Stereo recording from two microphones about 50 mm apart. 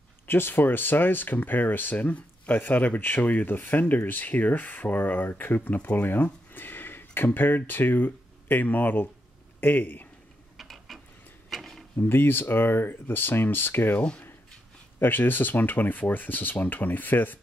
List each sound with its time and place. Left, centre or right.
0.3 s speech: left
6.5 s a sound: left
7.2 s speech: left
10.6 s gears: centre
11.5 s a sound: centre
12.0 s speech: left
13.9 s speech: left
15.0 s speech: left